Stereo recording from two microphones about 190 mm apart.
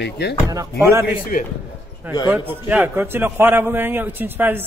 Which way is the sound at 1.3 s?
45° left (ahead or behind).